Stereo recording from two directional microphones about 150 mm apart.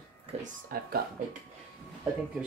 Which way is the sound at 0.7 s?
80° right.